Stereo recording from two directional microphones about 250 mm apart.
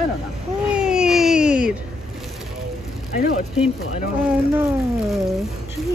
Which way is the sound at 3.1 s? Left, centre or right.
Left.